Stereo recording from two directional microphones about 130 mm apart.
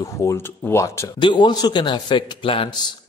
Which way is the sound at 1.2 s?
35° left (ahead or behind).